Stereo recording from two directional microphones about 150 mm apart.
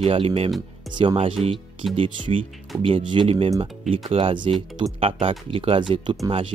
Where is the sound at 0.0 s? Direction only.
35° right (ahead or behind).